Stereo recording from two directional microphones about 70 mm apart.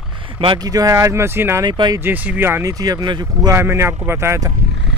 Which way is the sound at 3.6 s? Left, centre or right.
Right.